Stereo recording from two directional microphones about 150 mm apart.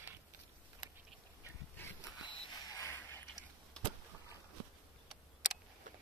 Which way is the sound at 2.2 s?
25° left (ahead or behind).